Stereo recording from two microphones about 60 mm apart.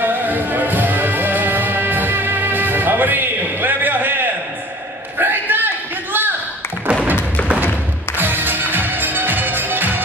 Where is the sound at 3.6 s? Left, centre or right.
Right.